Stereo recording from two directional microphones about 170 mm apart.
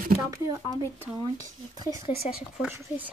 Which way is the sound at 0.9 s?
15° right (ahead or behind).